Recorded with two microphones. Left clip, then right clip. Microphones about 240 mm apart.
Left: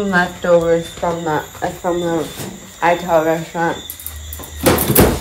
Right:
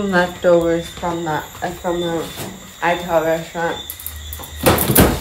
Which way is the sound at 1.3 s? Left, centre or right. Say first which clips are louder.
Left 3 dB; centre.